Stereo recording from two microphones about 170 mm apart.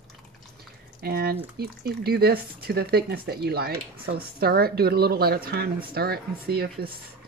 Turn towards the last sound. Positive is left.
turn(degrees=-65)  # may be behind; listen again after turning